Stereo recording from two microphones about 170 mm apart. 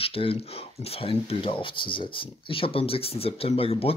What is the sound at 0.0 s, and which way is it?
Speech, 35° left (ahead or behind).